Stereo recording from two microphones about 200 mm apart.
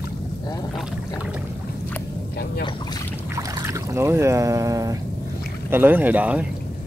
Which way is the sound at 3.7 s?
15° right (ahead or behind).